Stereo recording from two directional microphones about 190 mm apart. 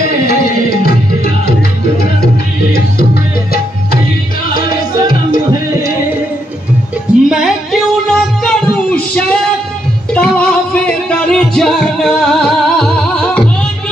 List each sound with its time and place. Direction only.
0.3 s music: 55° left (ahead or behind)
4.6 s music: 20° right (ahead or behind)
7.2 s music: centre (ahead or behind)